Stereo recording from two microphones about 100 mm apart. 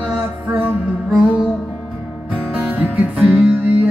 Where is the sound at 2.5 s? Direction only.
15° right (ahead or behind).